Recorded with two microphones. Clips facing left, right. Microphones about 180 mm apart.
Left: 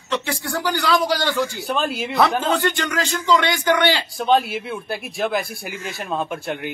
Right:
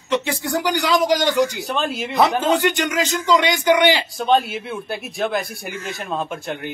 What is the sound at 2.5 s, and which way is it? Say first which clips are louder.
A man's voice: right 2 dB; 15° right (ahead or behind).